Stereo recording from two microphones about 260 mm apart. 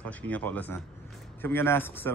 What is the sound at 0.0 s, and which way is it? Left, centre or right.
Speech, centre.